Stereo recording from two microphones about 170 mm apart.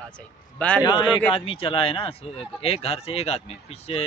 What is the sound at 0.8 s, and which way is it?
A man's voice, 25° left (ahead or behind).